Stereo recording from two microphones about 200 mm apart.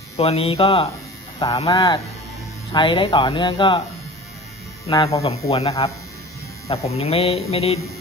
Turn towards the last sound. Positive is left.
turn(degrees=30)  # may be behind; listen again after turning